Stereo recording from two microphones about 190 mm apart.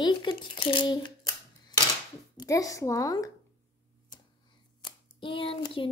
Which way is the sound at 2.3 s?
15° left (ahead or behind).